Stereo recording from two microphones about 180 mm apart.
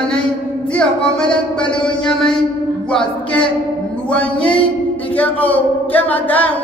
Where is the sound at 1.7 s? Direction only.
25° left (ahead or behind).